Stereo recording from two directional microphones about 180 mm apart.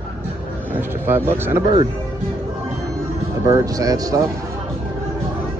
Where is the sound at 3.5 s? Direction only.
20° right (ahead or behind).